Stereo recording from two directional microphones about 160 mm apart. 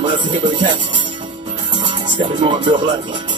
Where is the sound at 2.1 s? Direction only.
30° right (ahead or behind).